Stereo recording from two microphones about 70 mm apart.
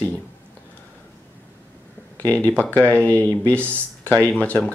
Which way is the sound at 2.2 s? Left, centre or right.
Left.